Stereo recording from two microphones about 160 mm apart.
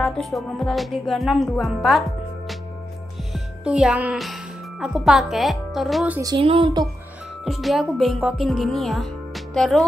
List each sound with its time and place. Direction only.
0.0 s music: centre (ahead or behind)
3.3 s speech: 5° right (ahead or behind)
6.3 s speech: 35° right (ahead or behind)
7.4 s music: centre (ahead or behind)